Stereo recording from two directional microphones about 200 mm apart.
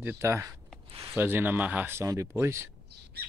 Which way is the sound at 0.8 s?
25° right (ahead or behind).